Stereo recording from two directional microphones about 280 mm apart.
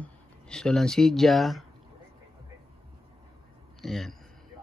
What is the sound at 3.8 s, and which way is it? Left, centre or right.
Speech, centre.